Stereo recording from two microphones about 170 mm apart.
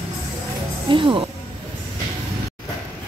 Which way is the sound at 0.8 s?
30° right (ahead or behind).